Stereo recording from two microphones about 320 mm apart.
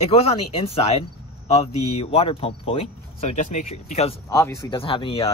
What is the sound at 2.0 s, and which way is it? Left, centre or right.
Speech, centre.